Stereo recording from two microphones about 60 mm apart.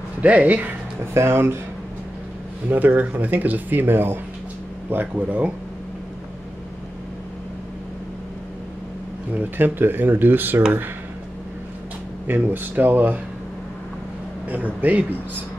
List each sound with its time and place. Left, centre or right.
0.2 s speech: right
1.1 s speech: right
2.7 s speech: right
9.3 s speech: right
12.3 s speech: right
14.5 s speech: right